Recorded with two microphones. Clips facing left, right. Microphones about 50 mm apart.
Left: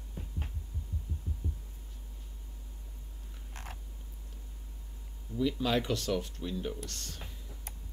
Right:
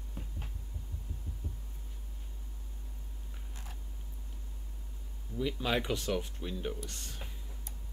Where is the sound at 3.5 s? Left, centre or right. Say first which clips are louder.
Left 6 dB; left.